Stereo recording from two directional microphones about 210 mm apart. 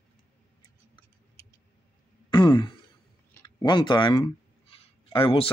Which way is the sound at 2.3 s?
20° left (ahead or behind).